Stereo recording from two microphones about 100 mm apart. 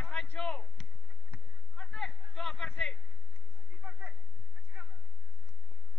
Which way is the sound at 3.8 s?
20° right (ahead or behind).